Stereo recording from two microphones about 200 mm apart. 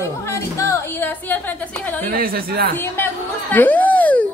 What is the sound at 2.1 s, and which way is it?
Speech, 50° right (ahead or behind).